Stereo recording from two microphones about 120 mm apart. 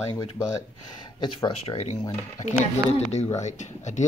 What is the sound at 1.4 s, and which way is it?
Speech, 60° left (ahead or behind).